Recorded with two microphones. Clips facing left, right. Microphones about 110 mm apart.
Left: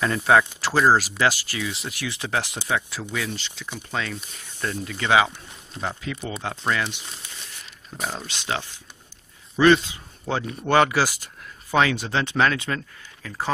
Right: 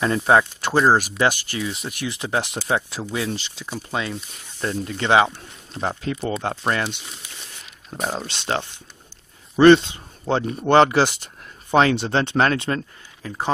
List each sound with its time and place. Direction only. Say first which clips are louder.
0.0 s speech: right 2 dB; 25° right (ahead or behind)
7.9 s speech: right 4 dB; 30° right (ahead or behind)